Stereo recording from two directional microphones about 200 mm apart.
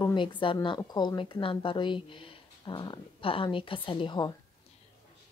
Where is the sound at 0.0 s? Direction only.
25° left (ahead or behind).